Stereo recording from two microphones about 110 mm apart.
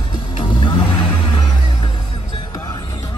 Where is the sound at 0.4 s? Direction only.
45° left (ahead or behind).